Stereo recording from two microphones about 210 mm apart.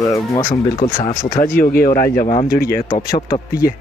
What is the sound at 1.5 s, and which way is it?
Speech, 45° left (ahead or behind).